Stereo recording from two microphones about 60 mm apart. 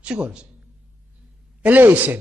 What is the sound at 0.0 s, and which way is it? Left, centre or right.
Speech, centre.